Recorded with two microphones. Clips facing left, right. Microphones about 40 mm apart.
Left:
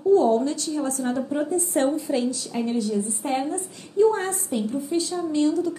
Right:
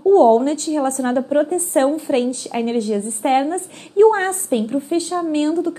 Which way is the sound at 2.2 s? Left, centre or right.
Right.